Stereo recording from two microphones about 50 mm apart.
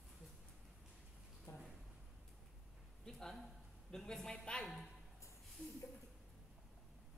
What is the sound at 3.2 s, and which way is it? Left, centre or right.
Speech, centre.